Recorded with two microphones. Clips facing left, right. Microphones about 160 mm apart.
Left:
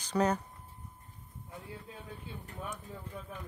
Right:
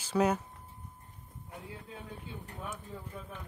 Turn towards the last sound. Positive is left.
turn(degrees=-5)  # may be behind; listen again after turning